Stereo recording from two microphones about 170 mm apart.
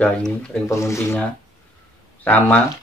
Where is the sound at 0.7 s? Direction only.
15° left (ahead or behind).